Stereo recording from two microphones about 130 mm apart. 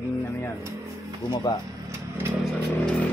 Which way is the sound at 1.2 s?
35° left (ahead or behind).